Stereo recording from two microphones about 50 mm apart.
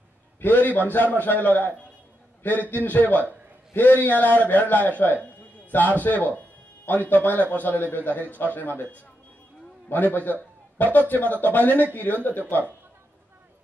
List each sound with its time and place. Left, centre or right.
0.4 s a man's voice: left
2.7 s a man's voice: left